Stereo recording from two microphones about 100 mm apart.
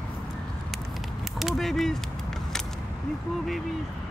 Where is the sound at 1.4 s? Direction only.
Centre (ahead or behind).